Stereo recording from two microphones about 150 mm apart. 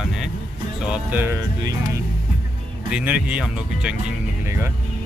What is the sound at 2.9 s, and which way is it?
Speech, 10° right (ahead or behind).